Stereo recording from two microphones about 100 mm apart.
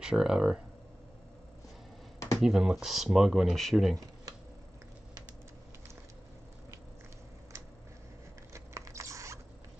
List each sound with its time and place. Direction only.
0.0 s speech: 5° right (ahead or behind)
2.4 s speech: 5° right (ahead or behind)
8.5 s biting: 30° right (ahead or behind)